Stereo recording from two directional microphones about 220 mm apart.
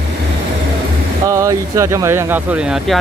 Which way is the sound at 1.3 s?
15° right (ahead or behind).